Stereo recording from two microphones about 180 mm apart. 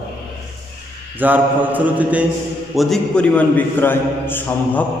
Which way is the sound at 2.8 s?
5° left (ahead or behind).